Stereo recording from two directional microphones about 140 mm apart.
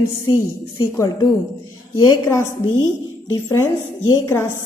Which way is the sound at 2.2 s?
20° left (ahead or behind).